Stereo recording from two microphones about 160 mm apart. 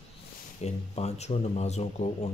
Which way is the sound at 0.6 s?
45° left (ahead or behind).